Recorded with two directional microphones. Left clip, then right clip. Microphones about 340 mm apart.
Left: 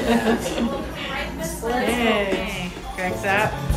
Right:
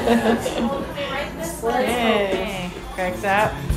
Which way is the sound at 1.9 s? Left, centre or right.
Right.